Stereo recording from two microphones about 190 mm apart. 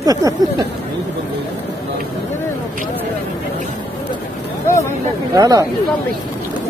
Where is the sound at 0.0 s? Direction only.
20° right (ahead or behind).